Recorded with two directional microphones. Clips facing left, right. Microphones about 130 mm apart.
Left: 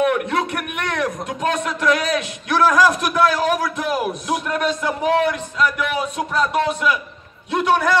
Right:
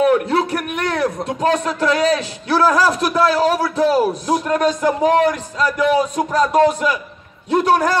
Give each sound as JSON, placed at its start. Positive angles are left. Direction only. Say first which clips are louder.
{"t": 0.0, "sound": "a man's voice", "louder": "right 4 dB", "side_deg": -35}